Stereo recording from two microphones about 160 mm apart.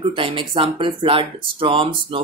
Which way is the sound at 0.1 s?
35° right (ahead or behind).